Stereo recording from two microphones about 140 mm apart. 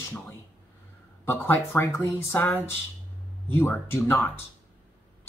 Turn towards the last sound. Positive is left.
turn(degrees=20)  # may be behind; listen again after turning